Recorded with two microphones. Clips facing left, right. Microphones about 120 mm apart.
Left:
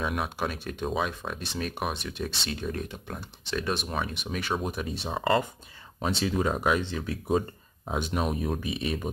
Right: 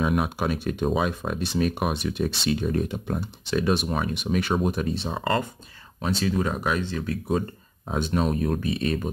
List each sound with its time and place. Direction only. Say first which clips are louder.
0.0 s speech: right 6 dB; 5° right (ahead or behind)
5.9 s speech: right 2 dB; 20° left (ahead or behind)